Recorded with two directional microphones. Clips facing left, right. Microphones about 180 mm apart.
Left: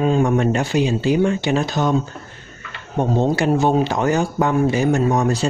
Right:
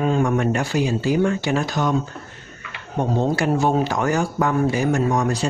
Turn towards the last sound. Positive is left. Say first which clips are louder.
# left 2 dB
turn(degrees=25)  # may be behind; listen again after turning